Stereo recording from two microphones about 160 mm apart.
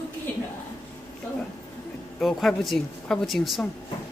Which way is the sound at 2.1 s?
Centre (ahead or behind).